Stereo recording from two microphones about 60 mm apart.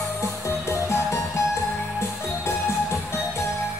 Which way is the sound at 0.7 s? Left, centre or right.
Left.